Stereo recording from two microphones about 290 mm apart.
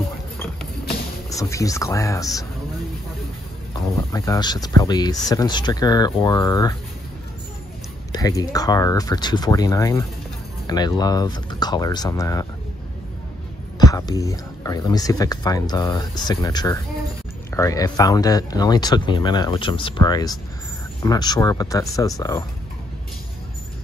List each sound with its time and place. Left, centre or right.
1.3 s speech: centre
3.9 s speech: centre
8.1 s speech: centre
13.7 s speech: centre